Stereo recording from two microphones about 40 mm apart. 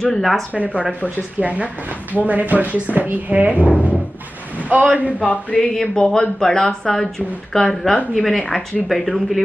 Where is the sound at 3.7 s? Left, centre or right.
Left.